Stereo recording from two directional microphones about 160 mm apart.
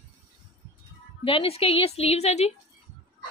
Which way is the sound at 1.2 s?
35° left (ahead or behind).